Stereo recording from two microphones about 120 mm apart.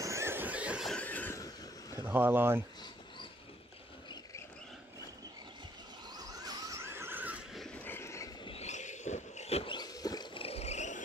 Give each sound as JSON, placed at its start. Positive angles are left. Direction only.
{"t": 0.0, "sound": "train", "side_deg": -25}
{"t": 0.8, "sound": "a sound", "side_deg": 10}
{"t": 1.3, "sound": "vehicle", "side_deg": 30}
{"t": 2.0, "sound": "speech", "side_deg": -15}
{"t": 6.1, "sound": "squeal", "side_deg": -35}
{"t": 7.7, "sound": "a sound", "side_deg": 15}
{"t": 8.5, "sound": "a sound", "side_deg": 65}
{"t": 9.8, "sound": "wild animals", "side_deg": 30}
{"t": 10.3, "sound": "vehicle", "side_deg": 55}